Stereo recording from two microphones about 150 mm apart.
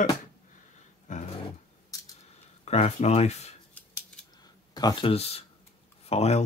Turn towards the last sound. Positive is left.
turn(degrees=45)  # may be behind; listen again after turning